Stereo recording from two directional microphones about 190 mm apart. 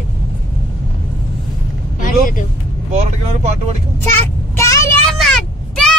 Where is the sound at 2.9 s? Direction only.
40° right (ahead or behind).